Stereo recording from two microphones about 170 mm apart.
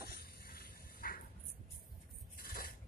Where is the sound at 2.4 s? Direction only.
60° left (ahead or behind).